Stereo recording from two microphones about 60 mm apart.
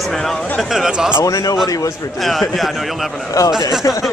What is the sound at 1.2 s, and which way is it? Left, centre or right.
Speech, left.